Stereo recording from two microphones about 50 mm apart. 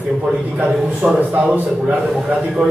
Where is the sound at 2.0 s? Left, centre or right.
Centre.